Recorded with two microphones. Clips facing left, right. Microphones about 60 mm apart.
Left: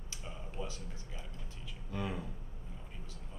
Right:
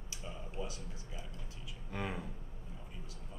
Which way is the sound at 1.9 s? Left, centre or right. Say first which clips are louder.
Left 1 dB; right.